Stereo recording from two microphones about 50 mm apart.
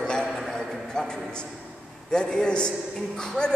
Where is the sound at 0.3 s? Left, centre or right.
Centre.